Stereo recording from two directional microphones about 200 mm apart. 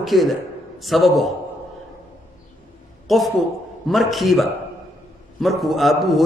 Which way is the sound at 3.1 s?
Centre (ahead or behind).